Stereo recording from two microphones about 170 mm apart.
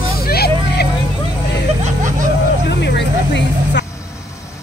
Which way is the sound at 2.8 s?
90° left.